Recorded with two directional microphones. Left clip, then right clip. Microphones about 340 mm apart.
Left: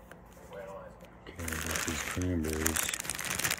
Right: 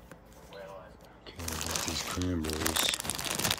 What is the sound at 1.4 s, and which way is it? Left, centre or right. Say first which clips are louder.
Shuffling cards: even; centre.